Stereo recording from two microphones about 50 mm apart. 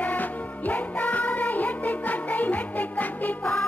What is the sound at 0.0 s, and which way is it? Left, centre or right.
Music, left.